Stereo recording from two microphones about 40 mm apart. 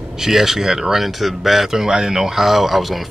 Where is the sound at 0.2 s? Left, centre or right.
Centre.